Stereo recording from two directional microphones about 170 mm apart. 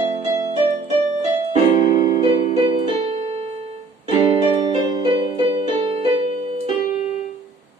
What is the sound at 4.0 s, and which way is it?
Music, 30° right (ahead or behind).